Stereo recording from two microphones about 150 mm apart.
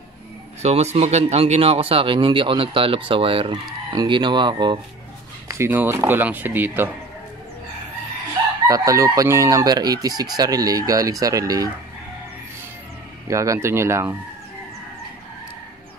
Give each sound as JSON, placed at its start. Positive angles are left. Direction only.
{"t": 0.6, "sound": "speech", "side_deg": -45}
{"t": 5.6, "sound": "speech", "side_deg": -15}
{"t": 8.6, "sound": "chicken", "side_deg": -20}
{"t": 13.3, "sound": "chicken", "side_deg": -20}